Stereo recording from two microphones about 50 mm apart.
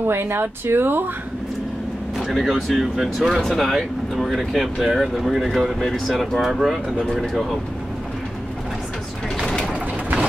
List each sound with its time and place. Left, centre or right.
0.0 s speech: right
2.4 s speech: centre